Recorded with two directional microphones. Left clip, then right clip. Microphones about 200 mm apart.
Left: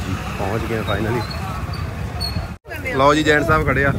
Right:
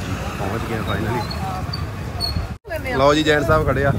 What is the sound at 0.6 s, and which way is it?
Speech, 55° right (ahead or behind).